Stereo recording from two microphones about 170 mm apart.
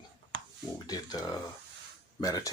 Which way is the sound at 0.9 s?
20° left (ahead or behind).